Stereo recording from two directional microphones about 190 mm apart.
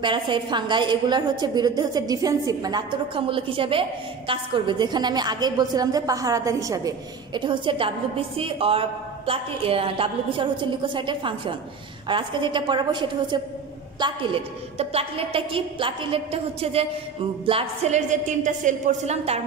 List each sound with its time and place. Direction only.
0.0 s a woman's voice: 25° right (ahead or behind)